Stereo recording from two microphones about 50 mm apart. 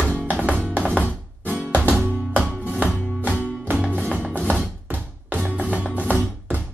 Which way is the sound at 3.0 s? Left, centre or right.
Left.